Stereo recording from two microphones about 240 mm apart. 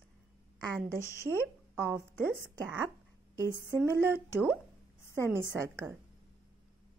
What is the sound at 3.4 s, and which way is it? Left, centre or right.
Speech, centre.